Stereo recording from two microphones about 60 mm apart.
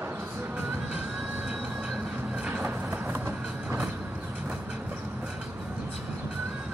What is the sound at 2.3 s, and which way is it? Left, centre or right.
Vehicle, centre.